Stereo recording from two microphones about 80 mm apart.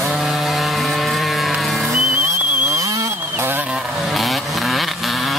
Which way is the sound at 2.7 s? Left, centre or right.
Right.